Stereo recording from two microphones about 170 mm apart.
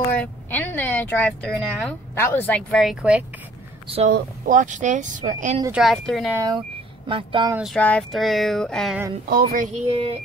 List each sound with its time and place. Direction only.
0.1 s speech: 10° left (ahead or behind); by 3.3 s 5° right (ahead or behind)
4.1 s speech: 50° right (ahead or behind)
5.7 s speech: centre (ahead or behind)
6.3 s speech: 20° right (ahead or behind)
7.7 s speech: 5° left (ahead or behind)
9.3 s speech: 60° right (ahead or behind)
9.8 s a sound: 35° right (ahead or behind)